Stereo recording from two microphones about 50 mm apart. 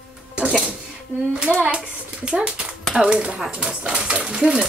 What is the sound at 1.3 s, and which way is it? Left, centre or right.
Speech, centre.